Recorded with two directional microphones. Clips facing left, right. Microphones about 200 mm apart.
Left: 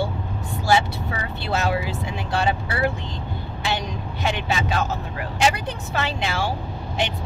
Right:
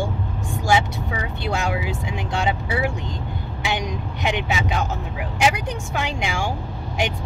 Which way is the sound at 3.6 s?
15° right (ahead or behind).